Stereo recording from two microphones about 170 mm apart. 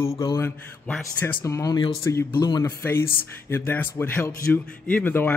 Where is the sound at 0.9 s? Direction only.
10° left (ahead or behind).